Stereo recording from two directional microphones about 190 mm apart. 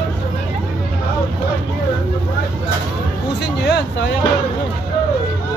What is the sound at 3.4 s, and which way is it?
Speech, 60° left (ahead or behind).